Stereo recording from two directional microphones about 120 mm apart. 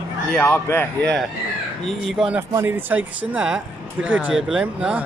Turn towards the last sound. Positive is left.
turn(degrees=-10)  # may be behind; listen again after turning